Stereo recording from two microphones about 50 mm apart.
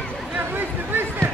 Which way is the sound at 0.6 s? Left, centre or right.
Right.